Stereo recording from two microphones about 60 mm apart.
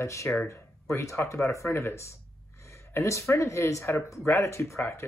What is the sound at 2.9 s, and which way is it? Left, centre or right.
Speech, left.